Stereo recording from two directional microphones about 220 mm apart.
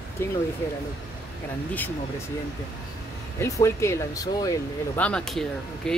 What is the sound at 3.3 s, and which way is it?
Speech, 15° left (ahead or behind).